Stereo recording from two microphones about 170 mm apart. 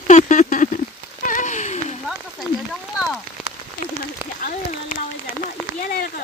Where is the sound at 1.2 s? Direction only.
50° left (ahead or behind).